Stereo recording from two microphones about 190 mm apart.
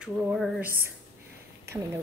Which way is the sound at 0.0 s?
Centre (ahead or behind).